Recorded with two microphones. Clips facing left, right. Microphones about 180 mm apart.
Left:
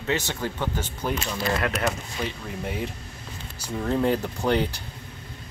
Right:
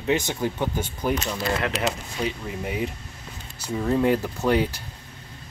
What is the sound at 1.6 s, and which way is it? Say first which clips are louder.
Speech: even; 25° right (ahead or behind).